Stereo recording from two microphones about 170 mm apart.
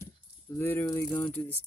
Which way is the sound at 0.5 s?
15° left (ahead or behind).